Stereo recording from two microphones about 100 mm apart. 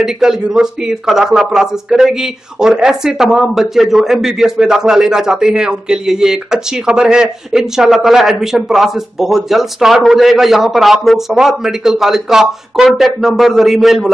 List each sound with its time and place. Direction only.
0.0 s speech: 5° right (ahead or behind)